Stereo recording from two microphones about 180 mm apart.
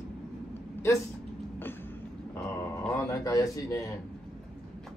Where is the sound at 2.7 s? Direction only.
15° left (ahead or behind).